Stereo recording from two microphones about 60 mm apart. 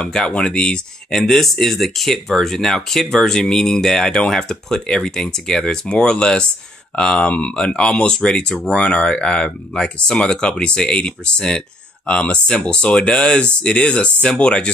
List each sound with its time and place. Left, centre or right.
0.0 s speech: centre
1.1 s speech: centre